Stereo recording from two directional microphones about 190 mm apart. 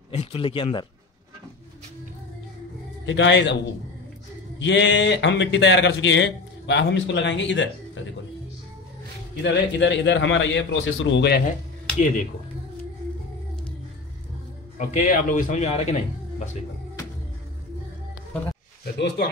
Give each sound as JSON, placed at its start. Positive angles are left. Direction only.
{"t": 0.1, "sound": "speech", "side_deg": 30}
{"t": 3.1, "sound": "speech", "side_deg": 70}
{"t": 4.6, "sound": "speech", "side_deg": 70}
{"t": 9.4, "sound": "speech", "side_deg": 70}
{"t": 15.0, "sound": "a man's voice", "side_deg": 45}
{"t": 18.9, "sound": "speech", "side_deg": 60}